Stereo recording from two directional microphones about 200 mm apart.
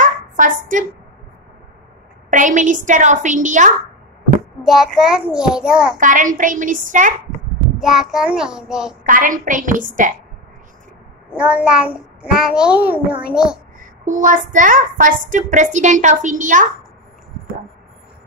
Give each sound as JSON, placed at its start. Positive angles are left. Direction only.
{"t": 0.0, "sound": "a sound", "side_deg": -40}
{"t": 2.3, "sound": "a woman's voice", "side_deg": -40}
{"t": 4.6, "sound": "a child's voice", "side_deg": -5}
{"t": 5.9, "sound": "a woman's voice", "side_deg": -40}
{"t": 7.8, "sound": "a child's voice", "side_deg": 0}
{"t": 9.0, "sound": "a woman's voice", "side_deg": -40}
{"t": 11.3, "sound": "a child's voice", "side_deg": -5}
{"t": 13.7, "sound": "a woman's voice", "side_deg": -40}